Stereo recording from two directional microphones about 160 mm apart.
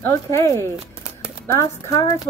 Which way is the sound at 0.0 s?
15° left (ahead or behind).